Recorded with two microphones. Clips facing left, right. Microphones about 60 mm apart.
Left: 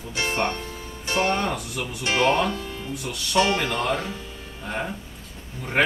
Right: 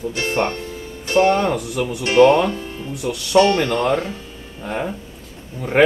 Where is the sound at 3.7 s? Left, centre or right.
Right.